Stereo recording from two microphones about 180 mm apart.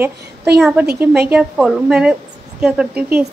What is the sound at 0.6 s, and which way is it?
A woman's voice, 5° right (ahead or behind).